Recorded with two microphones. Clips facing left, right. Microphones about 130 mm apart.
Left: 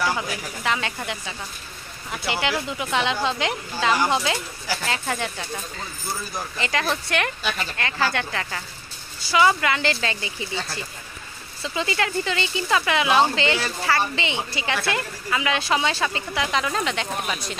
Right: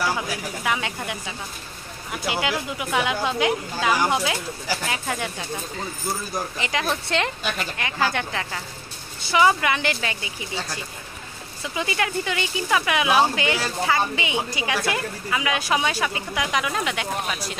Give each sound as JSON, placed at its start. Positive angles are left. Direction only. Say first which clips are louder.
{"t": 0.7, "sound": "speech", "louder": "left 1 dB", "side_deg": -15}
{"t": 6.3, "sound": "speech", "louder": "left 3 dB", "side_deg": -15}